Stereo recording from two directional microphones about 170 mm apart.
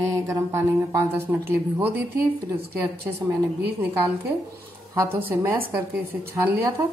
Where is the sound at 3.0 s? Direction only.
20° right (ahead or behind).